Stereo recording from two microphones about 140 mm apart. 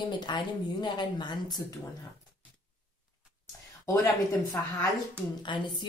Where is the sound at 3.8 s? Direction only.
20° left (ahead or behind).